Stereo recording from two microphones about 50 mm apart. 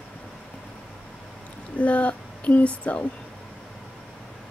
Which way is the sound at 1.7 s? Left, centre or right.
Left.